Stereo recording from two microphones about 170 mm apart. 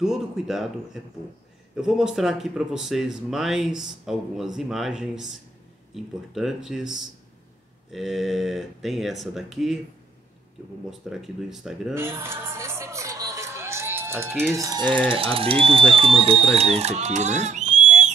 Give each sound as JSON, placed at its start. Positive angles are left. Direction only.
{"t": 0.0, "sound": "speech", "side_deg": -5}
{"t": 10.9, "sound": "speech", "side_deg": 0}
{"t": 11.9, "sound": "speech", "side_deg": -15}